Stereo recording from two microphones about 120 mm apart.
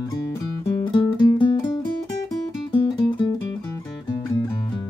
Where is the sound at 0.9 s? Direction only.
40° left (ahead or behind).